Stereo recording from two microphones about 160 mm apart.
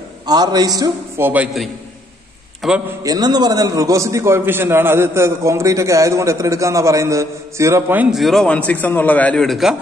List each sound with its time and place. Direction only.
0.3 s a man's voice: 25° right (ahead or behind); by 2.8 s centre (ahead or behind)
3.0 s a man's voice: 25° right (ahead or behind); by 9.8 s centre (ahead or behind)